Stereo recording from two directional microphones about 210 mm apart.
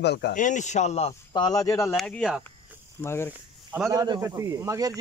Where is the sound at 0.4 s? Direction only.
35° left (ahead or behind); by 2.0 s 15° left (ahead or behind).